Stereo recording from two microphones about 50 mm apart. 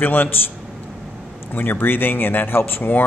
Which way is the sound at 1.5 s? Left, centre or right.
Left.